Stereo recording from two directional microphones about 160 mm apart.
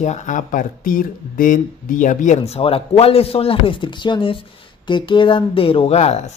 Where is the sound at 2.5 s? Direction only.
35° left (ahead or behind).